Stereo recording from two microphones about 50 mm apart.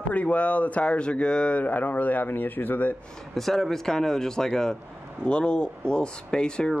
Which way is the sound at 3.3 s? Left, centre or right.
Centre.